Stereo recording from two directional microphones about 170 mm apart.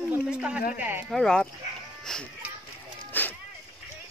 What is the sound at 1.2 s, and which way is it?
Speech, 5° left (ahead or behind).